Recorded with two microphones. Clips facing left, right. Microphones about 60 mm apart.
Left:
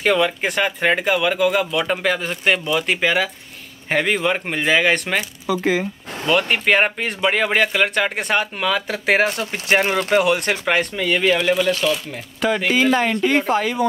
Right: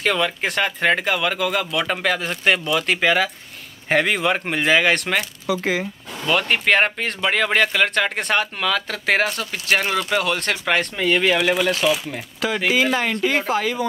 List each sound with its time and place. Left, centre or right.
0.0 s speech: centre